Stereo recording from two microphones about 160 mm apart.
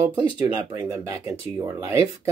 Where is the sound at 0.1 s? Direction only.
25° right (ahead or behind).